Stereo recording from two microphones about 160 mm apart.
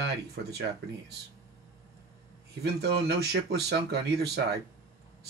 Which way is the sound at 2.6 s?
90° right.